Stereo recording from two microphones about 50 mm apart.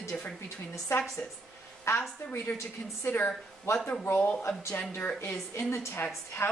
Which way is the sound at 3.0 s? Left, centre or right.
Left.